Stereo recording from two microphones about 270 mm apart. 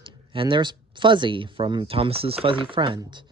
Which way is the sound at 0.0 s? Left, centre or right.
Centre.